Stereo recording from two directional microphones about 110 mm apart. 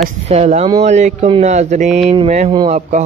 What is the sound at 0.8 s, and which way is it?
Speech, 90° right.